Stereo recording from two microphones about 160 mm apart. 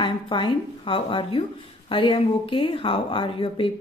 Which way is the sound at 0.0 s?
30° left (ahead or behind).